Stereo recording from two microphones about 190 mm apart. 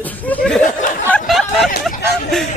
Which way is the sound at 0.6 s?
45° left (ahead or behind).